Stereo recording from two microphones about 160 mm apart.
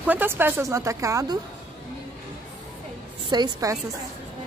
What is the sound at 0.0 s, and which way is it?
A woman's voice, 10° right (ahead or behind).